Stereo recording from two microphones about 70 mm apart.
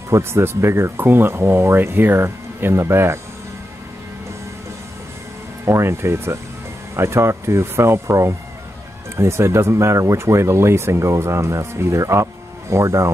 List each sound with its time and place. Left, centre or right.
0.1 s speech: right
5.7 s speech: right